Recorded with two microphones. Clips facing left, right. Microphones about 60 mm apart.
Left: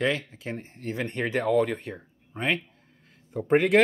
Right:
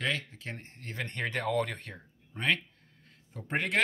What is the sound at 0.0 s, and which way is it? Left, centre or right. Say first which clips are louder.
Speech: left 6 dB; centre.